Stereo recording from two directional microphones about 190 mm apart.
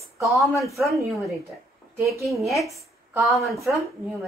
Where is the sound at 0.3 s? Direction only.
Centre (ahead or behind).